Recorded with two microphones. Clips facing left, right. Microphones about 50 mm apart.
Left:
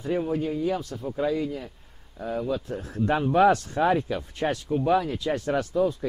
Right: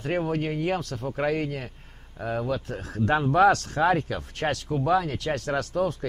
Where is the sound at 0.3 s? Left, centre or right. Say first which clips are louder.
Even; right.